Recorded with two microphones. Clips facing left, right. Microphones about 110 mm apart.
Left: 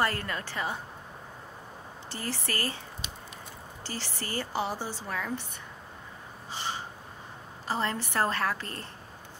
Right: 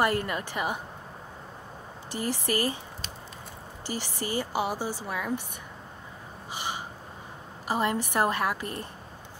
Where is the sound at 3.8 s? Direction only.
15° right (ahead or behind).